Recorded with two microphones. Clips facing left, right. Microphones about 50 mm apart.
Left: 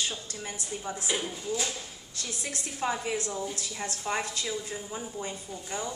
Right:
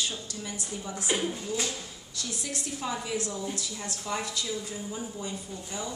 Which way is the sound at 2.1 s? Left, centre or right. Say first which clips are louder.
Right 1 dB; left.